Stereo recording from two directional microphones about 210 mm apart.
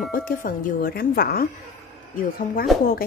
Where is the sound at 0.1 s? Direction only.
40° left (ahead or behind).